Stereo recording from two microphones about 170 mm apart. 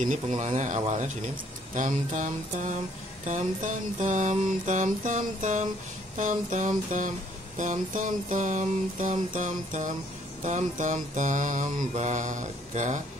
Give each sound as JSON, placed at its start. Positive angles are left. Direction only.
{"t": 0.0, "sound": "speech", "side_deg": -45}